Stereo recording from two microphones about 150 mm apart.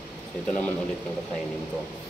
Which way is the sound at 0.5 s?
10° left (ahead or behind).